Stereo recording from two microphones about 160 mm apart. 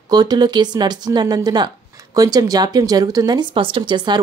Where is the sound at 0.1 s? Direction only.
25° right (ahead or behind).